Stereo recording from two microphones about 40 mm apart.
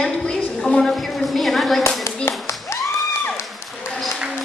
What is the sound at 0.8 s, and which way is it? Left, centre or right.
Speech, centre.